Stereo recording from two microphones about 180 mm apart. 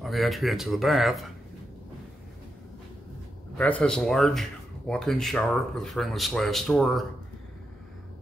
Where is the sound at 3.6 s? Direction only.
5° left (ahead or behind).